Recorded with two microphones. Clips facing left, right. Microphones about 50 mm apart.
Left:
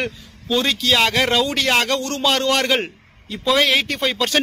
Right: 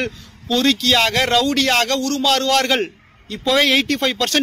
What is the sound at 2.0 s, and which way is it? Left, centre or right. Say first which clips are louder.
Speech: right 2 dB; left.